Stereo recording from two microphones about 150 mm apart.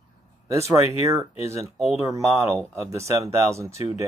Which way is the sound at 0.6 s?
20° right (ahead or behind).